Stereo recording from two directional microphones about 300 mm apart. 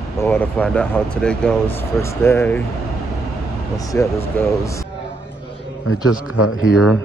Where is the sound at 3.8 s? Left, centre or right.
Centre.